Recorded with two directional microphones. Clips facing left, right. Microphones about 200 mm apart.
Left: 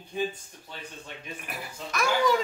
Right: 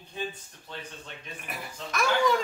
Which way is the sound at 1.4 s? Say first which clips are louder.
Left 1 dB; centre (ahead or behind).